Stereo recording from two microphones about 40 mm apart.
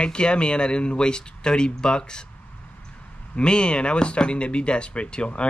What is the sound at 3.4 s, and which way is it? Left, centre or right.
Speech, left.